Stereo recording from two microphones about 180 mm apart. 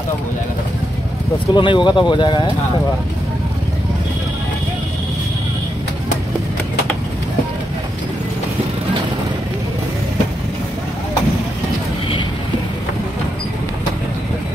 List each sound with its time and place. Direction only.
1.5 s speech: 25° left (ahead or behind)